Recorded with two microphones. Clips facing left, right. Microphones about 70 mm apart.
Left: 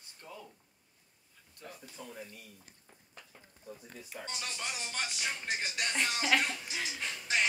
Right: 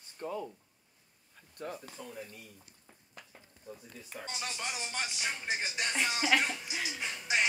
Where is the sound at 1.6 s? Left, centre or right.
Right.